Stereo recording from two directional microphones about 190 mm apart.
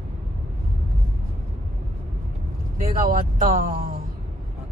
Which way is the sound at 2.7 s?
45° right (ahead or behind).